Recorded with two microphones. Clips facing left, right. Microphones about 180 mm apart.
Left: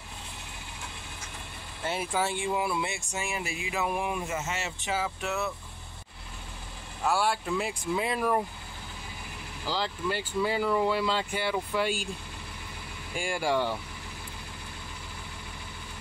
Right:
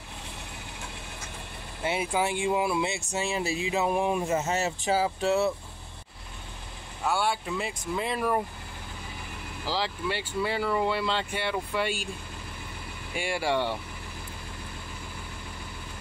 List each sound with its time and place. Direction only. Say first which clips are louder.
1.9 s speech: right 2 dB; 15° right (ahead or behind); by 5.5 s 30° right (ahead or behind)
7.1 s speech: left 1 dB; centre (ahead or behind)
9.7 s speech: right 1 dB; 5° right (ahead or behind)
13.1 s speech: even; centre (ahead or behind)